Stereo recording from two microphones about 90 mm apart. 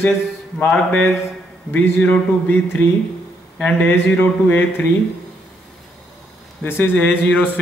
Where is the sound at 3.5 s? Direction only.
15° left (ahead or behind).